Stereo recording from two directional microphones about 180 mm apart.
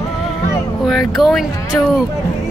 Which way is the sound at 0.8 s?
Centre (ahead or behind).